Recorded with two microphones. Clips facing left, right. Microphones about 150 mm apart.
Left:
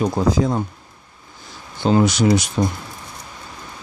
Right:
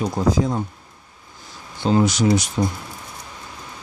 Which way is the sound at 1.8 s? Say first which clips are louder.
Left 2 dB; 70° left (ahead or behind).